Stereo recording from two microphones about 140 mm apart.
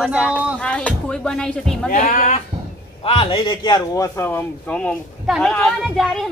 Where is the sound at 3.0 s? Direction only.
40° left (ahead or behind); by 6.2 s centre (ahead or behind).